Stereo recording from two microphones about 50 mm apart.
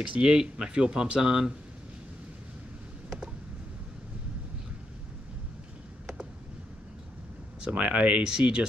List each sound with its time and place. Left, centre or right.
0.0 s speech: centre
7.7 s speech: right